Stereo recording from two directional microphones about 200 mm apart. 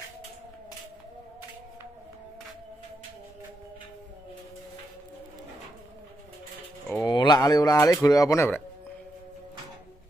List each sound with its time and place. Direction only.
7.0 s speech: 20° left (ahead or behind)